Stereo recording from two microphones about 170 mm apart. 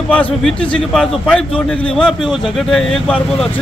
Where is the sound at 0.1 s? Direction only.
5° left (ahead or behind).